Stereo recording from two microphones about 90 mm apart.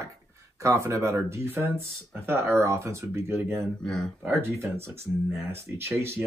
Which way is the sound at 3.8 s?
5° left (ahead or behind).